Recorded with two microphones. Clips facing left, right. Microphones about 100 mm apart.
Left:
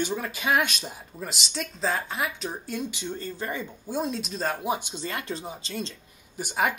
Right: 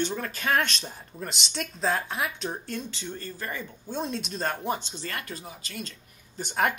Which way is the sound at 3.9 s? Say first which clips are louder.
Left 2 dB; 5° left (ahead or behind).